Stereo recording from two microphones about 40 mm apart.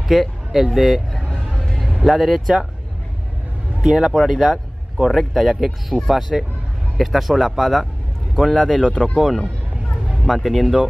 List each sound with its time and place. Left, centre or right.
0.1 s speech: centre
3.8 s speech: right
4.1 s speech: centre
8.8 s speech: left
9.1 s speech: centre